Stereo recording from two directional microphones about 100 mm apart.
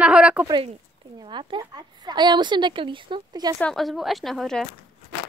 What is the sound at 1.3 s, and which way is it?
Speech, 55° right (ahead or behind).